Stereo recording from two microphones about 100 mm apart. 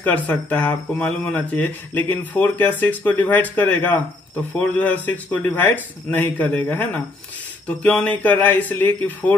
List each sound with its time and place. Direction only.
0.0 s speech: 15° left (ahead or behind)